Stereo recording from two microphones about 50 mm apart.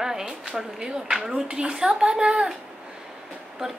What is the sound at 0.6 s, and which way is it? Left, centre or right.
Speech, centre.